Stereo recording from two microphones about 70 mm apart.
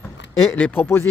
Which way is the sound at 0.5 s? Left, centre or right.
Left.